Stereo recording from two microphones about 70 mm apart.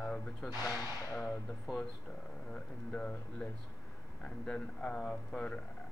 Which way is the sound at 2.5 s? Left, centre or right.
Centre.